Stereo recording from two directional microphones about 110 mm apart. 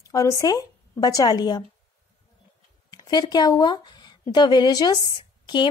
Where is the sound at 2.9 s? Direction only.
35° left (ahead or behind).